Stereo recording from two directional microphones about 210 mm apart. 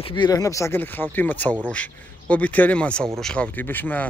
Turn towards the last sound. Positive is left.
turn(degrees=10)  # may be behind; listen again after turning